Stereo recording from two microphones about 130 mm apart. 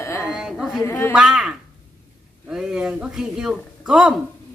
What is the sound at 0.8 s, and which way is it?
Carnatic music, 20° left (ahead or behind).